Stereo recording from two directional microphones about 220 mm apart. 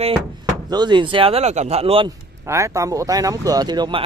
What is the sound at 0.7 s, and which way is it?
Speech, 20° right (ahead or behind).